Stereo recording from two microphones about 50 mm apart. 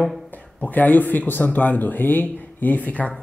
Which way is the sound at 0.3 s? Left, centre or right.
Left.